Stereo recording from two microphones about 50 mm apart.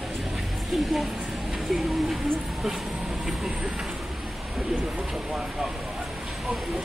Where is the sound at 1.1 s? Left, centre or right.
Centre.